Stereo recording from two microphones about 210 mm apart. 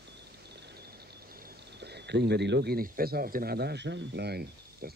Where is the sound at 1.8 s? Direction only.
50° right (ahead or behind).